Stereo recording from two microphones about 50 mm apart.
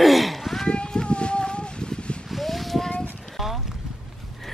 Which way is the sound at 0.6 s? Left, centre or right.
Centre.